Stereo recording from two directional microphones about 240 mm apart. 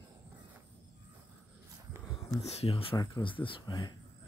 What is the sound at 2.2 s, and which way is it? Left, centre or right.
Speech, left.